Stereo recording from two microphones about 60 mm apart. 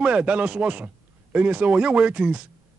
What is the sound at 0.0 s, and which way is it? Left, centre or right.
A man's voice, centre.